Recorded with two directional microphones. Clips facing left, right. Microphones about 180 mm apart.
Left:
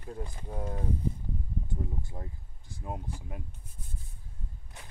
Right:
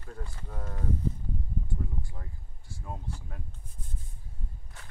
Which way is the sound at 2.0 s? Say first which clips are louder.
Left 4 dB; 25° left (ahead or behind).